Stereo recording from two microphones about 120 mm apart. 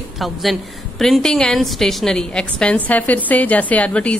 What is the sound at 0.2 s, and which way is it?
A woman's voice, centre (ahead or behind).